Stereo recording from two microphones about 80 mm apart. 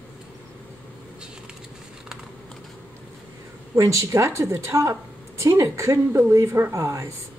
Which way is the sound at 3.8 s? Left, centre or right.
Right.